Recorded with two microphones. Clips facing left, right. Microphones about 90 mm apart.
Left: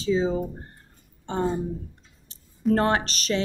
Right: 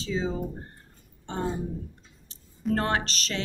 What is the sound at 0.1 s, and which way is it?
Speech, 20° left (ahead or behind).